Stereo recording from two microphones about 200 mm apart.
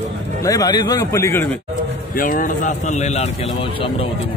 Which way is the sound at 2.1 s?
45° left (ahead or behind).